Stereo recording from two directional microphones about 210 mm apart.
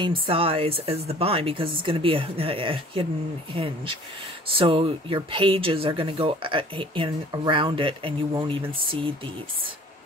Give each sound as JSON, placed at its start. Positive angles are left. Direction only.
{"t": 0.0, "sound": "speech", "side_deg": -25}